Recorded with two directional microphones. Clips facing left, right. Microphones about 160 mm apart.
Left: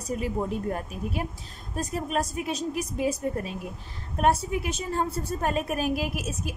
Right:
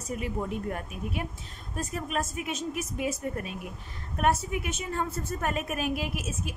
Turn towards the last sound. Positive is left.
turn(degrees=40)  # may be behind; listen again after turning